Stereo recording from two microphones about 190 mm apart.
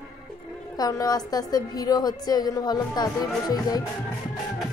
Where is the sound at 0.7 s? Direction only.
20° left (ahead or behind).